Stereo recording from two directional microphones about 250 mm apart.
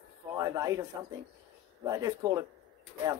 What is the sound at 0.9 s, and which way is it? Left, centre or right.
Speech, centre.